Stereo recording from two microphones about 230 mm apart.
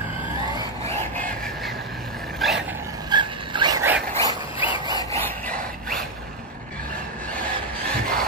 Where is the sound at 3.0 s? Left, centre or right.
Centre.